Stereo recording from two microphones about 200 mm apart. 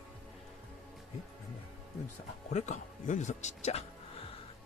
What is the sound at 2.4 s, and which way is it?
Speech, 35° left (ahead or behind).